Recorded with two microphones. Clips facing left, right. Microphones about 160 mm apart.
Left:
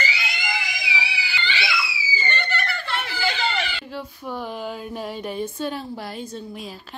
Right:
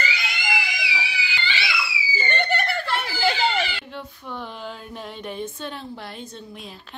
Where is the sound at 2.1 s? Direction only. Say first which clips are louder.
Right 4 dB; 55° right (ahead or behind).